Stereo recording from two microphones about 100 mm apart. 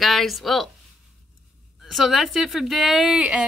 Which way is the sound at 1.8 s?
Centre (ahead or behind).